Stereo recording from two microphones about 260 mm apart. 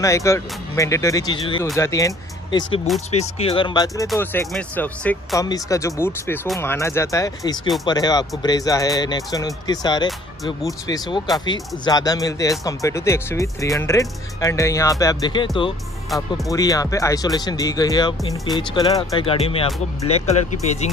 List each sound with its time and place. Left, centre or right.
0.0 s speech: centre